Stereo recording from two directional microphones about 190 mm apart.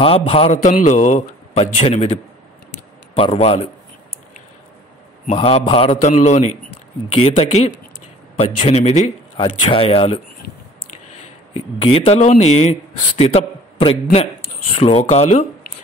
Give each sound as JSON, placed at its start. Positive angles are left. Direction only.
{"t": 0.0, "sound": "a man's voice", "side_deg": 30}
{"t": 3.2, "sound": "a man's voice", "side_deg": 30}
{"t": 5.2, "sound": "a man's voice", "side_deg": 35}
{"t": 11.5, "sound": "a man's voice", "side_deg": 30}